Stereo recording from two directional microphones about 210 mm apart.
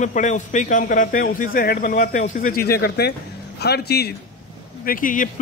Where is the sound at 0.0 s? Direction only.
35° left (ahead or behind).